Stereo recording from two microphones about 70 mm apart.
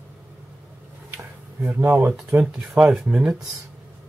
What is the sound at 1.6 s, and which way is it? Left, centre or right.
Speech, right.